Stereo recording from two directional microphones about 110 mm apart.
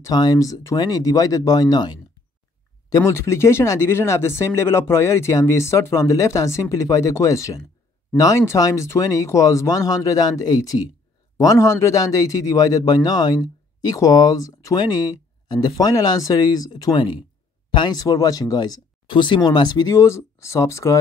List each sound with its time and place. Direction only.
0.0 s speech: 35° left (ahead or behind)
2.9 s speech: 25° left (ahead or behind)